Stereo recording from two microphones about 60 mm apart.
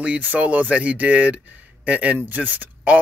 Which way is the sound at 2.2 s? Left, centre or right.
Right.